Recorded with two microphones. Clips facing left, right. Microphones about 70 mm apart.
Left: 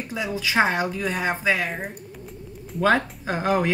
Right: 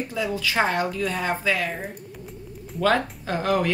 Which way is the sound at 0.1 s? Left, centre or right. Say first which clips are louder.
Left 3 dB; centre.